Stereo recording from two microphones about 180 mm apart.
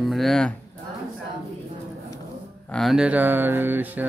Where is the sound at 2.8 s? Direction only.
Centre (ahead or behind).